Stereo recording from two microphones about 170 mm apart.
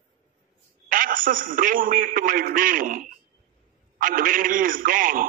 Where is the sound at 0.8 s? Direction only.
55° right (ahead or behind).